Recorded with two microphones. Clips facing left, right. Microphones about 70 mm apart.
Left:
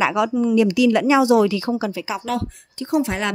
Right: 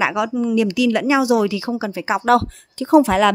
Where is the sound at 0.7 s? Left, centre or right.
Centre.